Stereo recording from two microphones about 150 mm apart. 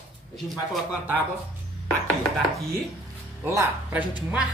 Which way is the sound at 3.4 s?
15° right (ahead or behind).